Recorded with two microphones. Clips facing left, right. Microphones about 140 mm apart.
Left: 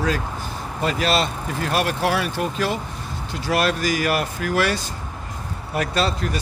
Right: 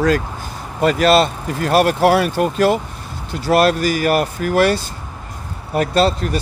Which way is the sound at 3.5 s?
40° right (ahead or behind).